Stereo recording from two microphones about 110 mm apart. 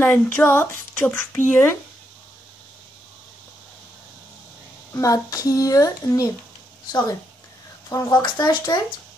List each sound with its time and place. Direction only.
0.0 s speech: 15° left (ahead or behind)
4.9 s a child's voice: 30° left (ahead or behind)